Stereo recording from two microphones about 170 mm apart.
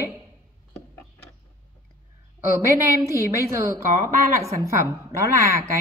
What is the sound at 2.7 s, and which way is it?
A woman's voice, 15° right (ahead or behind).